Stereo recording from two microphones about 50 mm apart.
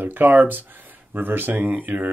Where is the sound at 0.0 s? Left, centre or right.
Right.